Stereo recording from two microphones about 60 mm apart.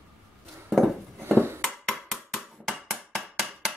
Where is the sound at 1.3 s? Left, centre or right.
Right.